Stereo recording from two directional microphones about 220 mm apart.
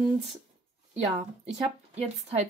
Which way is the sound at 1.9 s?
30° right (ahead or behind).